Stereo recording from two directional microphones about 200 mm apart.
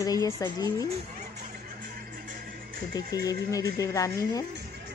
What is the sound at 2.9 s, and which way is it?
Speech, 15° left (ahead or behind).